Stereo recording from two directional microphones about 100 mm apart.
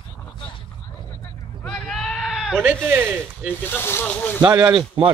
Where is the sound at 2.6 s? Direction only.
20° right (ahead or behind).